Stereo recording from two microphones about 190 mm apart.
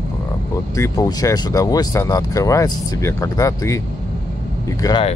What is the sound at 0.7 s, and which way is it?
Speech, 15° left (ahead or behind).